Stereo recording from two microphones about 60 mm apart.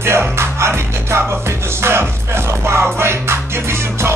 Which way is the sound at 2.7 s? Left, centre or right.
Right.